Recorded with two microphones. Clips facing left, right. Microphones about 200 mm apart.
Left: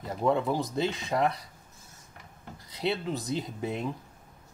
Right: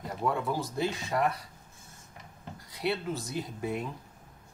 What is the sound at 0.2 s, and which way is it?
Speech, 20° left (ahead or behind).